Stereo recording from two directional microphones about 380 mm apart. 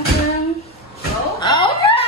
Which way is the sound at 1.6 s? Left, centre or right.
Centre.